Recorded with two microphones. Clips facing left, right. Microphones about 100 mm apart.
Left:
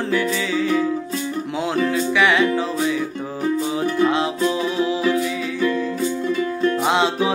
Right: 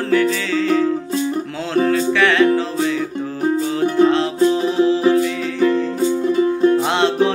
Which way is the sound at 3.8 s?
25° right (ahead or behind).